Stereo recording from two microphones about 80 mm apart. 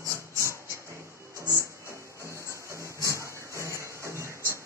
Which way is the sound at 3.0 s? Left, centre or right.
Right.